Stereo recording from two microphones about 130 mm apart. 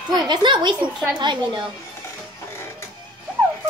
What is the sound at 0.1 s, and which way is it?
A child's voice, 35° right (ahead or behind).